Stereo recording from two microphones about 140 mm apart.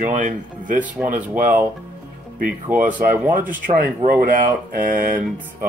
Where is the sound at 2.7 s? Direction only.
15° right (ahead or behind).